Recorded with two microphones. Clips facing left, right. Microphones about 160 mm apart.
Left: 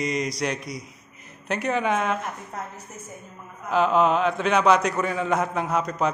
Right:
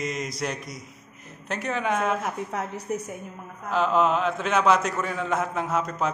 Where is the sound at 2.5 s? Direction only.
85° right.